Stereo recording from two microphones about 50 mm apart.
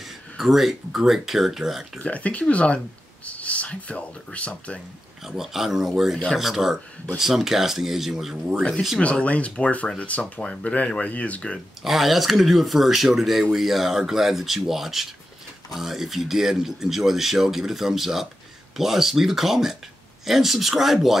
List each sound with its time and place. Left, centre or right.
0.0 s speech: centre
2.0 s speech: left
5.2 s speech: centre
9.0 s speech: left
11.8 s speech: centre